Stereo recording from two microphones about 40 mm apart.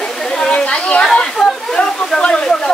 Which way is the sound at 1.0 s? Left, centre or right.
Centre.